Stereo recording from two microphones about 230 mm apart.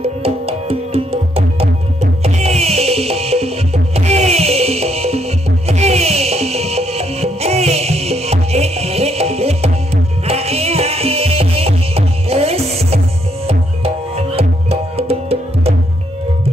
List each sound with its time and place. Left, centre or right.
0.0 s music: right